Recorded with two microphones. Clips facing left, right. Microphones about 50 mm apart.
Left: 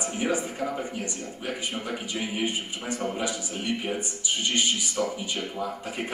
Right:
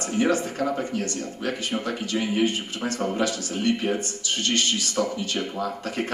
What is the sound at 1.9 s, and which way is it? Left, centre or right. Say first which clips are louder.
A man's voice: right 5 dB; centre.